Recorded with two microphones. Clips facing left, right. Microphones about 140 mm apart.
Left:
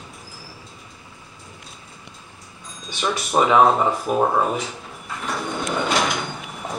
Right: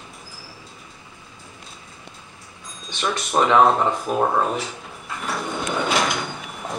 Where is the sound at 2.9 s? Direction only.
5° left (ahead or behind).